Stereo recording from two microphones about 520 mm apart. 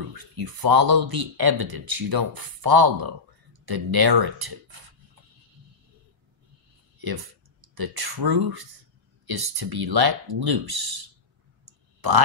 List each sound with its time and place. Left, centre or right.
0.1 s speech: right
7.0 s speech: right
11.6 s clicking: right